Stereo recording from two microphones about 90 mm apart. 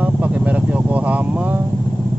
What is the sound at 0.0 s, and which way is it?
Vehicle, 15° right (ahead or behind).